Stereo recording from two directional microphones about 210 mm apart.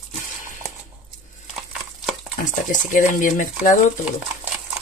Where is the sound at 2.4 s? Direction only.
40° left (ahead or behind).